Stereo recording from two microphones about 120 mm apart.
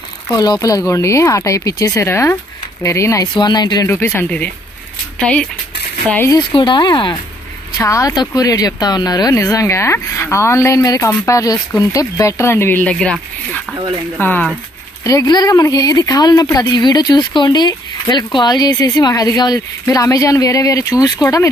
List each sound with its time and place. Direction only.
0.4 s speech: 30° left (ahead or behind)
3.8 s speech: 20° left (ahead or behind)
6.5 s speech: 40° left (ahead or behind)
7.8 s speech: 25° left (ahead or behind)
15.0 s speech: 30° left (ahead or behind)